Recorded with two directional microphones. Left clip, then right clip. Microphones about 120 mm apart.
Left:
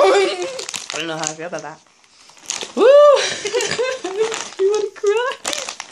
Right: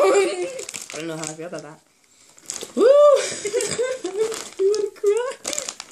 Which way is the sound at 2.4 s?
25° right (ahead or behind).